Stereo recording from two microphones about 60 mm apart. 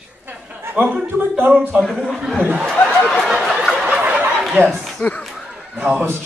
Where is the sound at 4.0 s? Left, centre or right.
Right.